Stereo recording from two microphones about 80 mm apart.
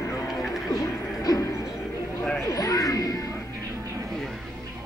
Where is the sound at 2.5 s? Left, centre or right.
Left.